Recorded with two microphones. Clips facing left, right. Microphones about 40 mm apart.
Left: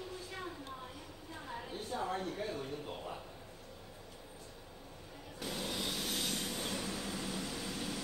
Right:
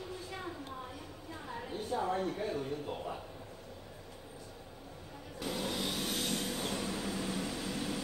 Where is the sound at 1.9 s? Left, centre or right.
Centre.